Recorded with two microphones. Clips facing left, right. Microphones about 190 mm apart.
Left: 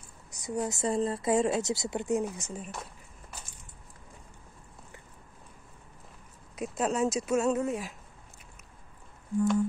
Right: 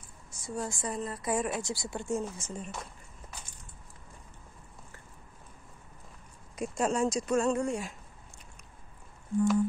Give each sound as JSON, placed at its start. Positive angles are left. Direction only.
{"t": 0.3, "sound": "speech", "side_deg": 15}
{"t": 2.6, "sound": "a sound", "side_deg": 5}
{"t": 6.5, "sound": "speech", "side_deg": 0}